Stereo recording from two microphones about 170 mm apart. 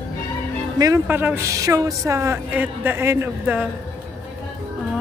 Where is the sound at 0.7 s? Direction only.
20° right (ahead or behind).